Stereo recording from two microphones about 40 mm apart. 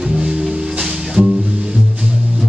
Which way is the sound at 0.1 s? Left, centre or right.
Right.